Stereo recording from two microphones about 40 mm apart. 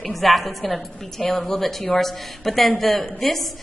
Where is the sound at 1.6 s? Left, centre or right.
Centre.